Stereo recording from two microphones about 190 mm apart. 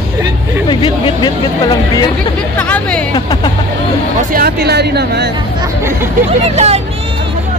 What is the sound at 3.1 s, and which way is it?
Speech, 25° left (ahead or behind).